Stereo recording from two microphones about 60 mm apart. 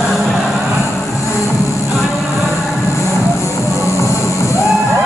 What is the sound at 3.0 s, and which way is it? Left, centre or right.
Music, left.